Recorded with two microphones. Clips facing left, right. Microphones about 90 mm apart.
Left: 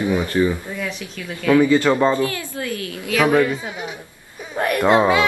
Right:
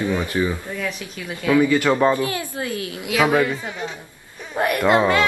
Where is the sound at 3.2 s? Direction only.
5° right (ahead or behind).